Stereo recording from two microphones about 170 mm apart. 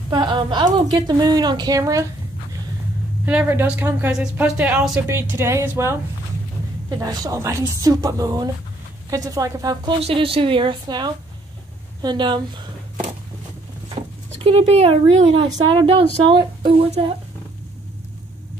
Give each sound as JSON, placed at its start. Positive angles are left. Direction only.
{"t": 0.1, "sound": "a woman's voice", "side_deg": -25}
{"t": 3.3, "sound": "speech", "side_deg": -10}
{"t": 7.0, "sound": "speech", "side_deg": -20}
{"t": 9.9, "sound": "a woman's voice", "side_deg": -35}
{"t": 14.4, "sound": "a woman's voice", "side_deg": -35}